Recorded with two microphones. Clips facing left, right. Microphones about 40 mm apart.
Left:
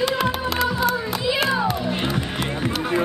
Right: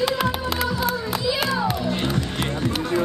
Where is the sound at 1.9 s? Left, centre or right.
Centre.